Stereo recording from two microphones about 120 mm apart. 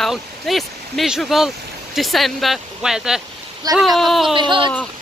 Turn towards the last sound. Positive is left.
turn(degrees=-45)  # may be behind; listen again after turning